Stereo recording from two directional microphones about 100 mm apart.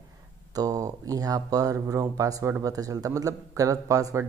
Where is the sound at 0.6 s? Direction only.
35° right (ahead or behind).